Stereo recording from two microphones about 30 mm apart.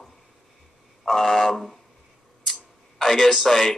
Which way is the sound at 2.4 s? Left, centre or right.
Centre.